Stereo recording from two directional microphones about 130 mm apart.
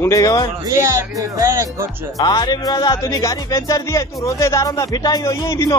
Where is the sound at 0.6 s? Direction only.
25° right (ahead or behind).